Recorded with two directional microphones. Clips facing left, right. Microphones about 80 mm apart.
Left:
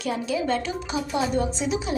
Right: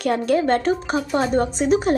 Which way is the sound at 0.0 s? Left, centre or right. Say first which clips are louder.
Right 7 dB; right.